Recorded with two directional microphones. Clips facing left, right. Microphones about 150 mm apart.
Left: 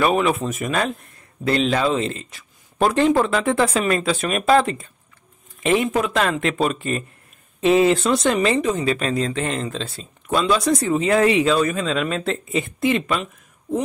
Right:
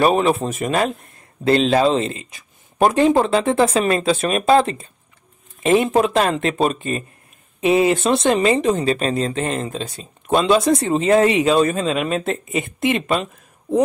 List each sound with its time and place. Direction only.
0.0 s speech: 30° right (ahead or behind)
2.0 s speech: 15° right (ahead or behind)
7.6 s speech: 15° right (ahead or behind); by 13.8 s 35° right (ahead or behind)